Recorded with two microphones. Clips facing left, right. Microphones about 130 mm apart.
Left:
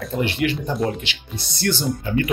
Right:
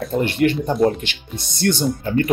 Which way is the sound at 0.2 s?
45° right (ahead or behind).